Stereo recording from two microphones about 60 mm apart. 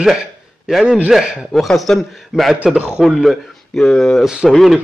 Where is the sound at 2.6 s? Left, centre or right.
Centre.